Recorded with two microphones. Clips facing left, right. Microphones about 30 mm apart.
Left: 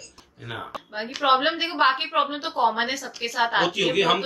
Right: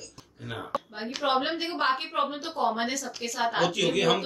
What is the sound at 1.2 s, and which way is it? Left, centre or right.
A woman's voice, left.